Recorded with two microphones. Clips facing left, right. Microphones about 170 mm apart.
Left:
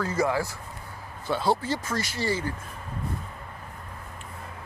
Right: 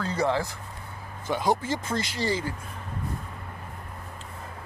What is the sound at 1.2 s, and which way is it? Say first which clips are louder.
Speech: even; 15° right (ahead or behind).